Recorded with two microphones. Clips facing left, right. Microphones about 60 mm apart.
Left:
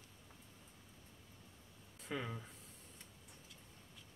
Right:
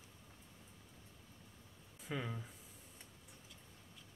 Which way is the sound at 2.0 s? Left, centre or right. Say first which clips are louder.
Even; centre.